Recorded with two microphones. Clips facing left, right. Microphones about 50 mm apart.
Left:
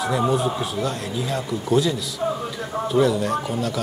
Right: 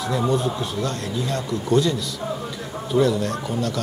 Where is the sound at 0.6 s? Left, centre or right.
Centre.